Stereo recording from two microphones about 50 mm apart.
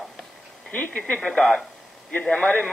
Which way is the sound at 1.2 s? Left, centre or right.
Centre.